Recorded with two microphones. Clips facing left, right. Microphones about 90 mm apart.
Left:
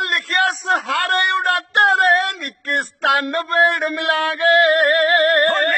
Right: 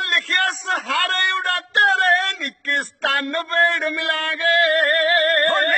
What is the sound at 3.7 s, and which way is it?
Music, 50° left (ahead or behind).